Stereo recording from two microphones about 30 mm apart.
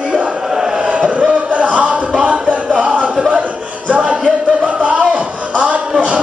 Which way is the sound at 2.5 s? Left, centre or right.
Right.